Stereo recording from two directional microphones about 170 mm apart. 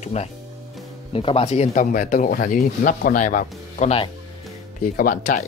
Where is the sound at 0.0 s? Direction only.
40° left (ahead or behind).